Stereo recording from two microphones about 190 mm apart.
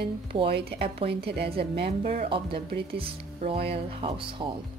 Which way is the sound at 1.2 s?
60° right (ahead or behind).